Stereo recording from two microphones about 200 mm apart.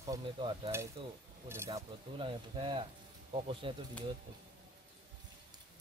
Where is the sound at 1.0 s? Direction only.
25° right (ahead or behind).